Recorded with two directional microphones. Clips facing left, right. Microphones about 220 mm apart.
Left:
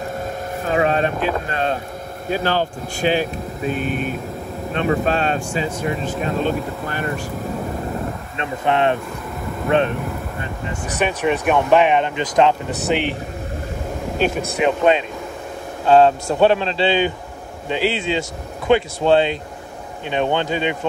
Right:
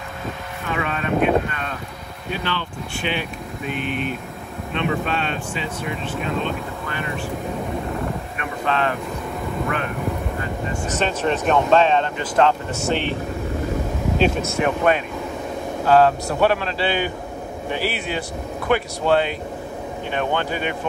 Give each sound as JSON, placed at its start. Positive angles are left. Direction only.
{"t": 0.7, "sound": "speech", "side_deg": 35}
{"t": 8.4, "sound": "speech", "side_deg": 20}
{"t": 10.9, "sound": "speech", "side_deg": 15}
{"t": 14.1, "sound": "speech", "side_deg": 0}
{"t": 14.6, "sound": "speech", "side_deg": 20}